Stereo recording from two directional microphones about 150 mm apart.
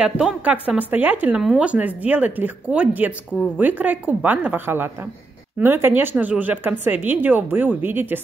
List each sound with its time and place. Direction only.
0.0 s speech: 5° right (ahead or behind)